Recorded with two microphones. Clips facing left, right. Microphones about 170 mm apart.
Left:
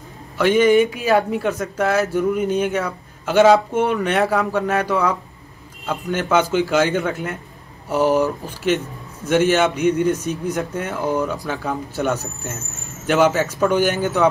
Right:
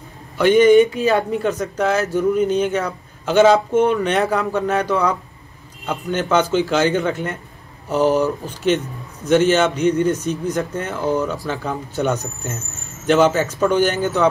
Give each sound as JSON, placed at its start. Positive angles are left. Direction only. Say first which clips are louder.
{"t": 0.4, "sound": "speech", "louder": "right 3 dB", "side_deg": 0}
{"t": 9.9, "sound": "speech", "louder": "right 1 dB", "side_deg": -35}
{"t": 10.4, "sound": "speech", "louder": "right 1 dB", "side_deg": 10}